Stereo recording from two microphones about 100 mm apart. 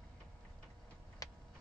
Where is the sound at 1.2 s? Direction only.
35° left (ahead or behind).